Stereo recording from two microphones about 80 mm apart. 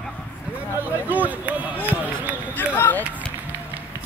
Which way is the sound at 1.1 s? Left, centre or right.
Right.